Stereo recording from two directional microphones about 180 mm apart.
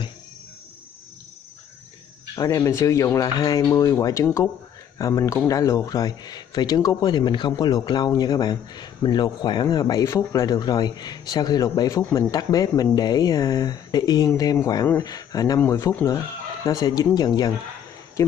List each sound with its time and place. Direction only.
2.3 s speech: 15° left (ahead or behind)